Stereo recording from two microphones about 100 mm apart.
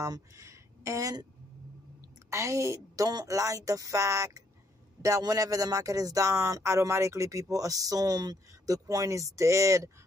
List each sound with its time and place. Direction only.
0.0 s speech: 30° right (ahead or behind)
2.2 s speech: 30° right (ahead or behind)